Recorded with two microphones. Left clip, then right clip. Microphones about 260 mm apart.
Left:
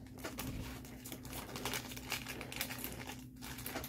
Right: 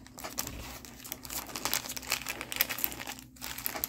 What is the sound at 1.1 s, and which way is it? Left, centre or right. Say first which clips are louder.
Crumpling: right 7 dB; right.